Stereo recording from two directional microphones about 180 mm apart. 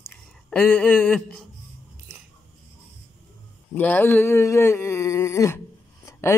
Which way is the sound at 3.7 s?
10° left (ahead or behind).